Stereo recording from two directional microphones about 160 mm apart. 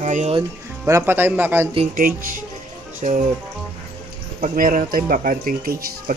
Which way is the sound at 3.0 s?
50° right (ahead or behind).